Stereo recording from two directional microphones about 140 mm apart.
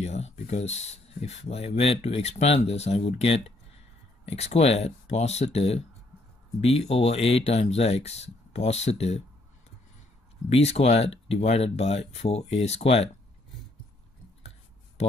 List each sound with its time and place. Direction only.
0.0 s speech: 50° left (ahead or behind)
10.5 s speech: 50° left (ahead or behind)